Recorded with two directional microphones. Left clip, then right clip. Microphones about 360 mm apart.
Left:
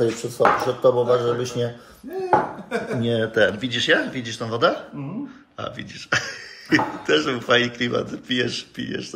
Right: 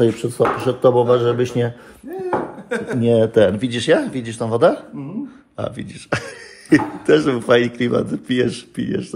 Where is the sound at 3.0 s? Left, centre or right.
Centre.